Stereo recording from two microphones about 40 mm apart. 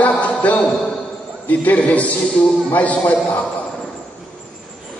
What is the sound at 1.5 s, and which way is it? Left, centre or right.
Speech, left.